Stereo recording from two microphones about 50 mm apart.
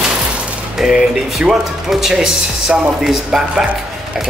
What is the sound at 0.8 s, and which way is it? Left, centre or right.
Speech, centre.